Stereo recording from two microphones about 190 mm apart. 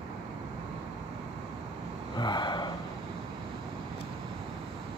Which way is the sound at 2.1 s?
25° left (ahead or behind).